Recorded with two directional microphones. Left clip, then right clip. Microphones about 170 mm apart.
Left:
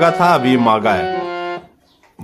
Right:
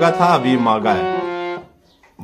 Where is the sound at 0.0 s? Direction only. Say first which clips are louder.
Left 2 dB; 30° left (ahead or behind).